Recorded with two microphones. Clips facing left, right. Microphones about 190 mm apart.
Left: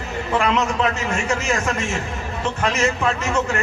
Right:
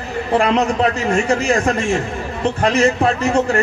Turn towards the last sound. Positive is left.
turn(degrees=-35)  # may be behind; listen again after turning